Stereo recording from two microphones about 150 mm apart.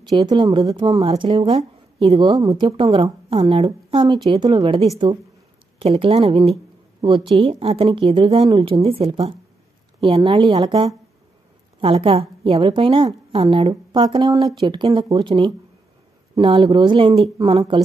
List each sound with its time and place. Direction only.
0.1 s a woman's voice: 30° right (ahead or behind)
1.6 s a sound: 45° right (ahead or behind)
2.1 s a woman's voice: 30° right (ahead or behind)
4.3 s a woman's voice: 25° right (ahead or behind)
7.0 s a woman's voice: 30° right (ahead or behind)